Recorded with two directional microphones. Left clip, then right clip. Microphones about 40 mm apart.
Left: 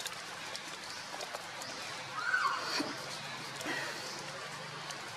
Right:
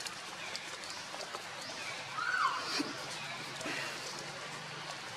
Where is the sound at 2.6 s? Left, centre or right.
Centre.